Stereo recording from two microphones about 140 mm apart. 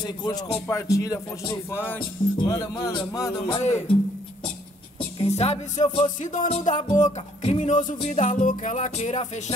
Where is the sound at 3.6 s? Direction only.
50° left (ahead or behind).